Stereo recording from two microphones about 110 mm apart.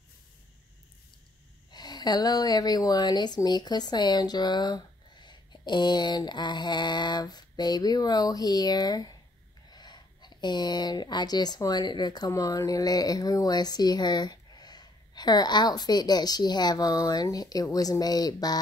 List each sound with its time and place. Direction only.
1.7 s speech: 40° left (ahead or behind)